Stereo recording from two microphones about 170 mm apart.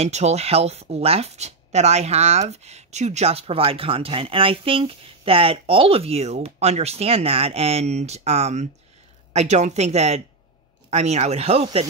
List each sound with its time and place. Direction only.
0.0 s speech: 40° right (ahead or behind)